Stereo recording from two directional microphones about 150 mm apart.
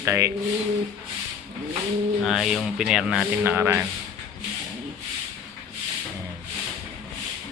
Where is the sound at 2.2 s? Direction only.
Centre (ahead or behind).